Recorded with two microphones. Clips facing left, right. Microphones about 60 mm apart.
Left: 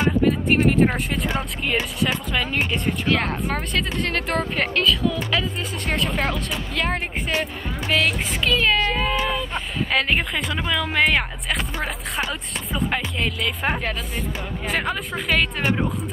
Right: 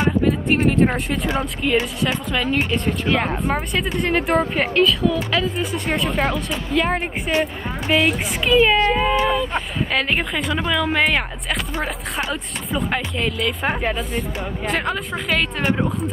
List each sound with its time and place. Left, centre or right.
0.0 s speech: centre
3.1 s speech: centre
8.5 s speech: centre